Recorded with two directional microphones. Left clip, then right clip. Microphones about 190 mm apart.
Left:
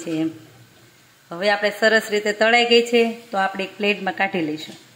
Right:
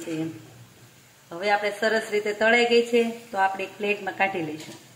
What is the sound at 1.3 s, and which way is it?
A woman's voice, 35° left (ahead or behind).